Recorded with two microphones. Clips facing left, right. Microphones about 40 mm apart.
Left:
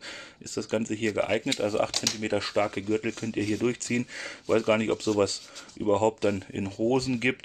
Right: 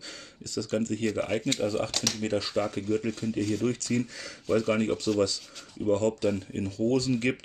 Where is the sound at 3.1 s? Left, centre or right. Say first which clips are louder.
Even; left.